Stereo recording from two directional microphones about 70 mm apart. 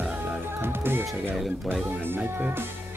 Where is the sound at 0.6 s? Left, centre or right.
Right.